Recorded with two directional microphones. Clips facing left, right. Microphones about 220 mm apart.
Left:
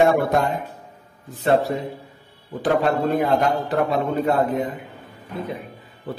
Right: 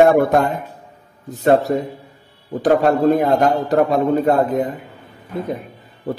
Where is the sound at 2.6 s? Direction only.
45° right (ahead or behind).